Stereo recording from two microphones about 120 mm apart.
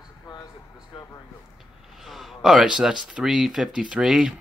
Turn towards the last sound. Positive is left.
turn(degrees=-5)  # may be behind; listen again after turning